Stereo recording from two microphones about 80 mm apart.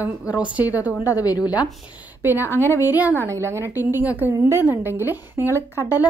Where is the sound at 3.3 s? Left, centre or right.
Right.